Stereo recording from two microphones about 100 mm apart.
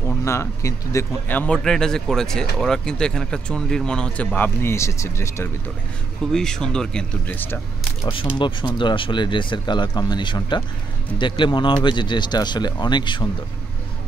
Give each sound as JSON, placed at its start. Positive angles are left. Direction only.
{"t": 0.0, "sound": "speech", "side_deg": 25}
{"t": 1.3, "sound": "speech", "side_deg": 15}
{"t": 6.3, "sound": "speech", "side_deg": 5}
{"t": 7.2, "sound": "speech", "side_deg": 20}
{"t": 8.1, "sound": "speech", "side_deg": 60}